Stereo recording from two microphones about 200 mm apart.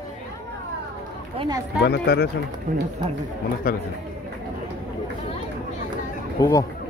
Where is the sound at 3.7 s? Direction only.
45° left (ahead or behind).